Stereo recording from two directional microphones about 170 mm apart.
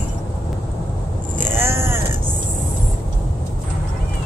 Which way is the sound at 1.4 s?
15° right (ahead or behind).